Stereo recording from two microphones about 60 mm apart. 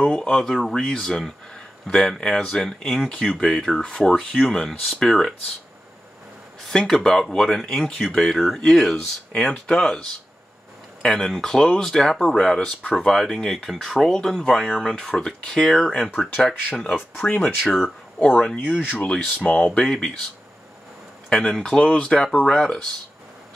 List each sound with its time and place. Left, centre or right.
0.2 s speech: centre
6.7 s speech: centre
12.9 s speech: centre
16.2 s speech: left
16.7 s speech: centre
17.6 s speech: centre
18.2 s speech: left
18.9 s speech: centre
21.3 s speech: centre